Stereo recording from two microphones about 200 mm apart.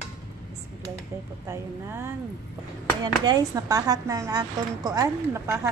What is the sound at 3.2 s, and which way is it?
A woman's voice, 20° right (ahead or behind).